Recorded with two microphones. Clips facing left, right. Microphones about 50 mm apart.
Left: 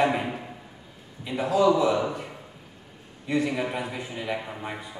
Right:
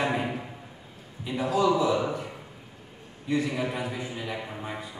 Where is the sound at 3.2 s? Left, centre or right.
Left.